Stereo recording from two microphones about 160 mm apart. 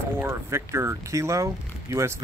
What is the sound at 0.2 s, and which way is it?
Speech, 15° right (ahead or behind).